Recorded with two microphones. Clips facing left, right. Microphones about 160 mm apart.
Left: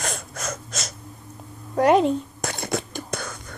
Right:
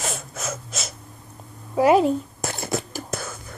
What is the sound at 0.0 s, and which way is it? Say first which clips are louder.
Gasp: even; 5° right (ahead or behind).